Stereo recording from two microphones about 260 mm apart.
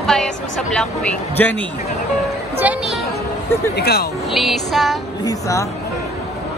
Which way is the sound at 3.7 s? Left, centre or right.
Left.